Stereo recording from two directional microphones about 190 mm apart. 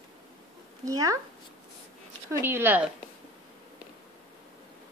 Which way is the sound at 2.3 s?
10° right (ahead or behind).